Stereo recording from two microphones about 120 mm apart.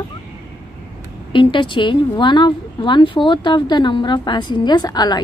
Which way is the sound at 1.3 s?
45° left (ahead or behind).